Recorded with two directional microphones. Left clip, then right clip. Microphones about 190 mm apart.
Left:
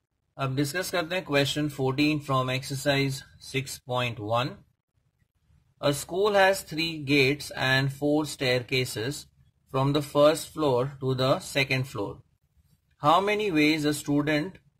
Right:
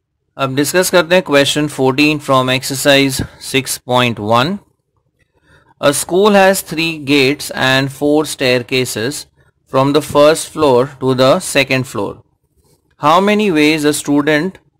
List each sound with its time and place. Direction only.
0.3 s speech: 35° right (ahead or behind)
5.8 s speech: 30° right (ahead or behind)